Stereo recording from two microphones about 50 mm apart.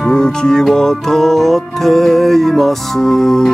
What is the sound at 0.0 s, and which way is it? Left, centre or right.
Music, centre.